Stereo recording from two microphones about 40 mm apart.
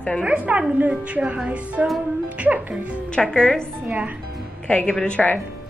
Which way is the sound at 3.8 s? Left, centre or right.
Right.